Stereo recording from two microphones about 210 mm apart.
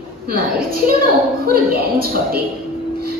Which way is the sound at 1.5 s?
45° right (ahead or behind).